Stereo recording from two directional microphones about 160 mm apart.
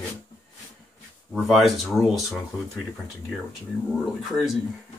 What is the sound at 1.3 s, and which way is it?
Speech, centre (ahead or behind).